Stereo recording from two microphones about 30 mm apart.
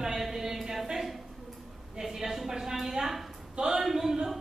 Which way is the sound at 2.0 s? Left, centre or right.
Centre.